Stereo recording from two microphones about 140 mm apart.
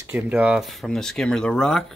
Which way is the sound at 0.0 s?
10° right (ahead or behind).